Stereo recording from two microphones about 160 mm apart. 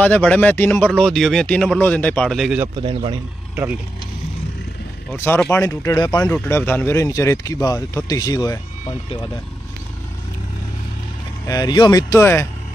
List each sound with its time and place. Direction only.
0.0 s speech: 10° left (ahead or behind)
2.7 s speech: 35° right (ahead or behind)
5.1 s speech: 15° left (ahead or behind)
6.3 s speech: 15° left (ahead or behind)
11.4 s speech: 25° left (ahead or behind)